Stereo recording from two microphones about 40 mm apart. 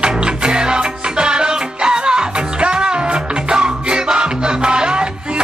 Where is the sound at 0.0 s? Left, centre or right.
Right.